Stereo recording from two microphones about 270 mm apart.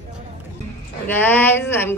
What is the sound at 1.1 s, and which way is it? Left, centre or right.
Speech, centre.